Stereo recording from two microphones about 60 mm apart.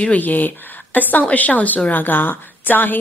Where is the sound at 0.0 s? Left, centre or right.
Left.